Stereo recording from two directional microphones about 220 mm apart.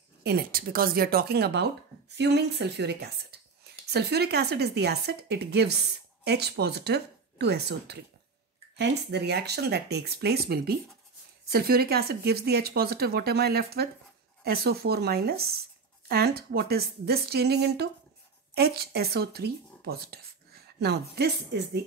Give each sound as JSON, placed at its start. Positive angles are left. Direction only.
{"t": 0.2, "sound": "a woman's voice", "side_deg": -45}